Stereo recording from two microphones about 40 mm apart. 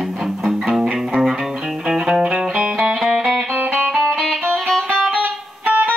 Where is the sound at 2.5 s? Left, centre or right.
Right.